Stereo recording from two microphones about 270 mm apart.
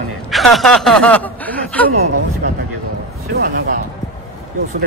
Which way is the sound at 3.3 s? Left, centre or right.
Right.